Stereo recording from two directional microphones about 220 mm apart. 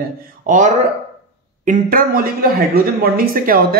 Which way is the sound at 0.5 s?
35° right (ahead or behind).